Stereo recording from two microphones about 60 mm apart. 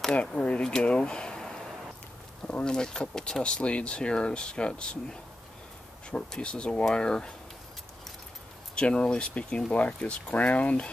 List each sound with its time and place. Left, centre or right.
0.5 s speech: centre
6.0 s speech: centre
8.7 s speech: centre